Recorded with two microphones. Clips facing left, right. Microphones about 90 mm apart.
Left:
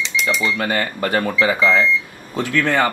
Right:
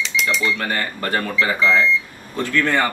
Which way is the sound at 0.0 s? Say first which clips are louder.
Left 1 dB; centre (ahead or behind).